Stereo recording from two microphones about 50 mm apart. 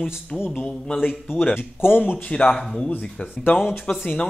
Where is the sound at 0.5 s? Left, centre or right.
Centre.